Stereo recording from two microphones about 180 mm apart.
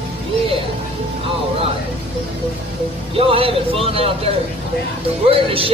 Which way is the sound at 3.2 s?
30° right (ahead or behind).